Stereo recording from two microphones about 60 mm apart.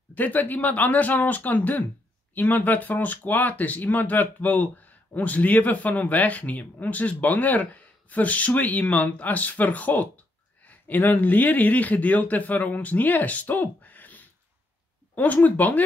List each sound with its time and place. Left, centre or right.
0.1 s speech: left